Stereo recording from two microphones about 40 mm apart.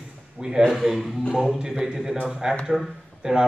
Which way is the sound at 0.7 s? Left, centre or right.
Centre.